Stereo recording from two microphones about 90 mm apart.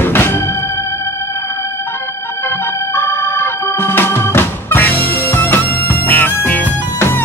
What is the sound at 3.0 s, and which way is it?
Organ, 30° left (ahead or behind).